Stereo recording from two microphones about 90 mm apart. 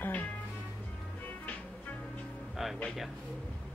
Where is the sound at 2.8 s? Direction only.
5° left (ahead or behind).